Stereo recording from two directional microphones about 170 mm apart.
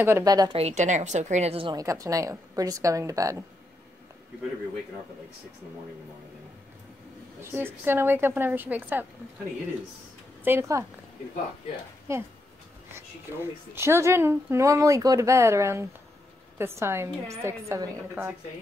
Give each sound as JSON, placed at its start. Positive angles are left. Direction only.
{"t": 0.0, "sound": "a woman's voice", "side_deg": -20}
{"t": 0.6, "sound": "a woman's voice", "side_deg": -40}
{"t": 1.8, "sound": "a woman's voice", "side_deg": -20}
{"t": 7.5, "sound": "speech", "side_deg": -15}
{"t": 10.4, "sound": "speech", "side_deg": -15}
{"t": 12.1, "sound": "speech", "side_deg": -15}
{"t": 13.7, "sound": "speech", "side_deg": -15}